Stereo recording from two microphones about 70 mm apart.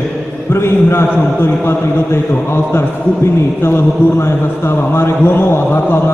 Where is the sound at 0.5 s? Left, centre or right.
Left.